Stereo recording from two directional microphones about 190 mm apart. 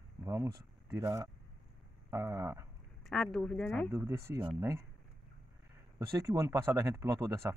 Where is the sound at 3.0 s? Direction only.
Centre (ahead or behind).